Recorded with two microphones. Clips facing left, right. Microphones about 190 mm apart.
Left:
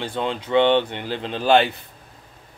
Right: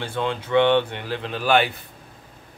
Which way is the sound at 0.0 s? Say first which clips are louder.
Even; 20° left (ahead or behind).